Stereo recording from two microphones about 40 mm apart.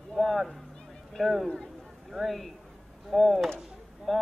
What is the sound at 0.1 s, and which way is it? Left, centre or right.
Speech, centre.